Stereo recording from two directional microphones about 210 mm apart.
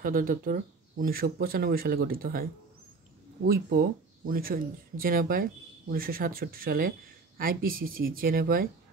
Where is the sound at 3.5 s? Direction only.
45° right (ahead or behind).